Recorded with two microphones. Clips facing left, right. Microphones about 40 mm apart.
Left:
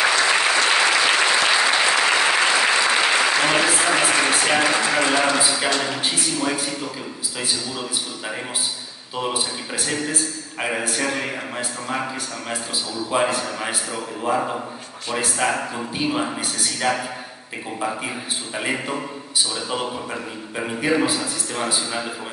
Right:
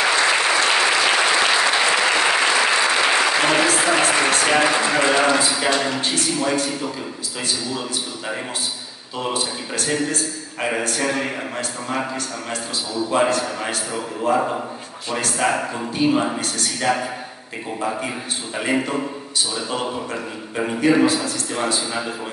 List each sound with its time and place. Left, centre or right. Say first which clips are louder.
0.1 s applause: right 1 dB; centre
3.7 s a sound: right 1 dB; centre
4.3 s a man's voice: right 2 dB; centre
5.4 s a man's voice: right 1 dB; centre
9.2 s a man's voice: right 1 dB; centre